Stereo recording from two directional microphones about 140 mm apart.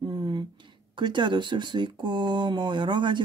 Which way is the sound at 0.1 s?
35° right (ahead or behind).